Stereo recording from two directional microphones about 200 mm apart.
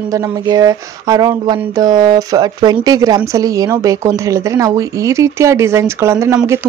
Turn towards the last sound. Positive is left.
turn(degrees=-15)  # may be behind; listen again after turning